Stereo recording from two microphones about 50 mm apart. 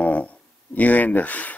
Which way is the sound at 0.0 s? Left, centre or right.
Left.